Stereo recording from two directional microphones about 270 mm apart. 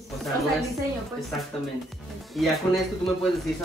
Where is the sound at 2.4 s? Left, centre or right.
Centre.